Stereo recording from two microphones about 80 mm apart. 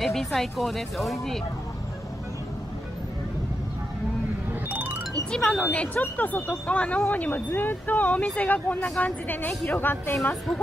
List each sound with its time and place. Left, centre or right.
0.0 s speech: centre
4.5 s music: right
5.3 s speech: centre; by 10.1 s left